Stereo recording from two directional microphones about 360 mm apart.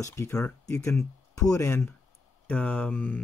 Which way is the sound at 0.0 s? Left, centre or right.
Centre.